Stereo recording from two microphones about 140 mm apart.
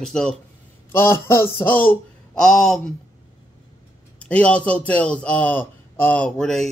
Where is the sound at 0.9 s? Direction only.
20° left (ahead or behind).